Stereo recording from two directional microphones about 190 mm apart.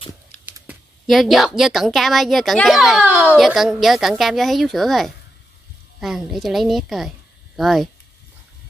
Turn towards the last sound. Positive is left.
turn(degrees=0)  # may be behind; listen again after turning